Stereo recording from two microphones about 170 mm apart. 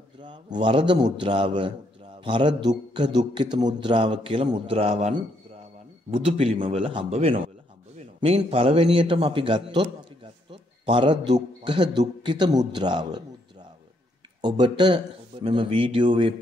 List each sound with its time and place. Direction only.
0.6 s a man's voice: 30° right (ahead or behind)
6.1 s a man's voice: 35° right (ahead or behind)
14.4 s a man's voice: 25° right (ahead or behind)